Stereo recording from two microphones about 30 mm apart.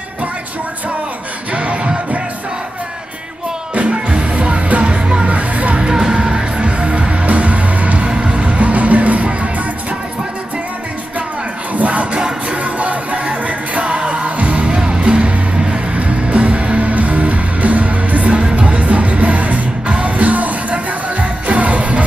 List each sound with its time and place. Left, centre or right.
1.5 s music: right
3.9 s music: right
4.3 s music: right
4.8 s music: right
5.2 s music: right
5.8 s music: right
6.6 s music: right
8.1 s music: right
8.5 s music: right
11.7 s crowd: right
12.4 s music: right
13.2 s music: right
14.7 s music: right
15.0 s music: right